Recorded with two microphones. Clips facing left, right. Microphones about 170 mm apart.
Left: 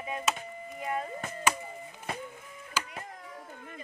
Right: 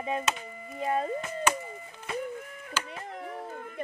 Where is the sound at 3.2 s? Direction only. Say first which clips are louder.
Right 8 dB; 65° right (ahead or behind).